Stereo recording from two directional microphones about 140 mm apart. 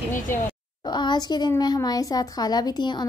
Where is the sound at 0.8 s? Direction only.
30° left (ahead or behind).